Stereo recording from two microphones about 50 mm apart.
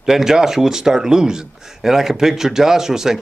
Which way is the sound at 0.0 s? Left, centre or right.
Centre.